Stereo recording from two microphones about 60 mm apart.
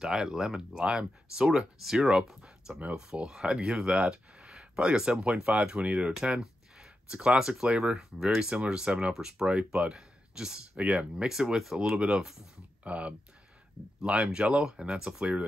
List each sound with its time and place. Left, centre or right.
0.0 s speech: centre
2.7 s speech: right
3.0 s speech: centre
9.5 s speech: right
10.8 s speech: right
11.2 s speech: centre
12.8 s speech: right